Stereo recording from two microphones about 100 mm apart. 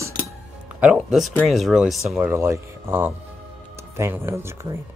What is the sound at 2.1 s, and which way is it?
Speech, 20° right (ahead or behind).